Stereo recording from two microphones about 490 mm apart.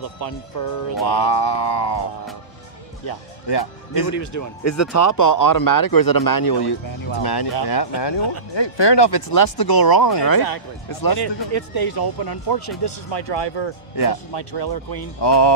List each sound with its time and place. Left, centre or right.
1.0 s speech: left
3.1 s speech: left